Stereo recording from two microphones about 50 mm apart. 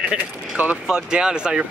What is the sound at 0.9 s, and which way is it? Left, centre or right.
Speech, centre.